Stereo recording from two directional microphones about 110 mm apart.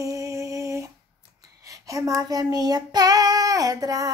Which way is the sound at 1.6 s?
30° right (ahead or behind).